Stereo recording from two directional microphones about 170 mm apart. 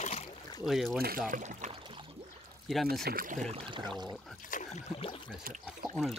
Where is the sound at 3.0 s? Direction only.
55° right (ahead or behind).